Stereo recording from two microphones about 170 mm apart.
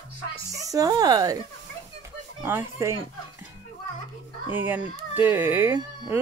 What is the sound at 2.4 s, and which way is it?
Speech, 15° right (ahead or behind).